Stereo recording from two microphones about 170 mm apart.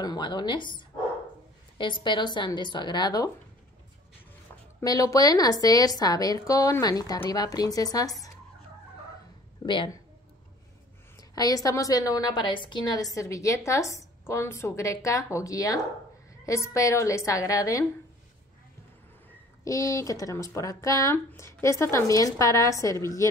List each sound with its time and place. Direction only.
0.0 s a woman's voice: 25° left (ahead or behind)
4.7 s a woman's voice: 20° left (ahead or behind)
9.7 s a woman's voice: 30° left (ahead or behind)
11.1 s a woman's voice: 20° left (ahead or behind)
19.6 s a woman's voice: 20° left (ahead or behind)